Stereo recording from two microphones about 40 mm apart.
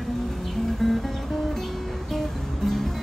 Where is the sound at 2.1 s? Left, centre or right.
Centre.